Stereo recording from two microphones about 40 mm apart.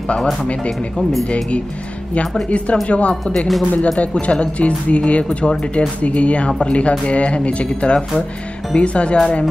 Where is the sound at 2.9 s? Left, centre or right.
Left.